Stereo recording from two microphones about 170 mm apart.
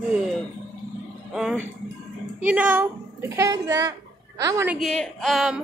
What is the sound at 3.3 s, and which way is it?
A woman's voice, 20° right (ahead or behind).